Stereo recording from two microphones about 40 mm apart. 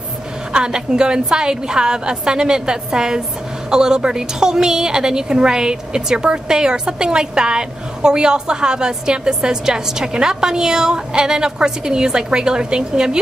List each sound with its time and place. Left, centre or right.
0.7 s a woman's voice: right